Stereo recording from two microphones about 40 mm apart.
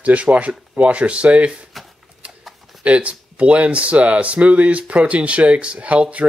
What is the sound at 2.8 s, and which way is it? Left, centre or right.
Speech, right.